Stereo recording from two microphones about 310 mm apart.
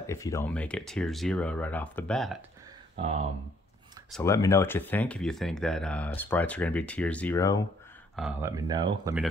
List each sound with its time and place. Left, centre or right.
0.0 s speech: centre
4.1 s speech: centre
8.2 s speech: centre